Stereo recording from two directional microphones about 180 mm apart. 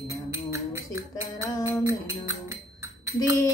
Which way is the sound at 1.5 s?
20° left (ahead or behind).